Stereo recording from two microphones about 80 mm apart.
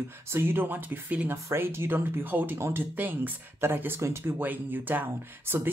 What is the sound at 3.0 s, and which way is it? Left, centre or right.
Speech, right.